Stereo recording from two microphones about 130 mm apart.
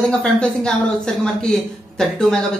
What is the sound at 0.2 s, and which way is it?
A woman's voice, 5° left (ahead or behind).